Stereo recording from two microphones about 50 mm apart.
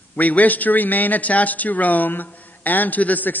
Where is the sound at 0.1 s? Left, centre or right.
Left.